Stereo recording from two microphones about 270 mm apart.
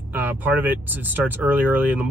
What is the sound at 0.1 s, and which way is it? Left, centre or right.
Speech, centre.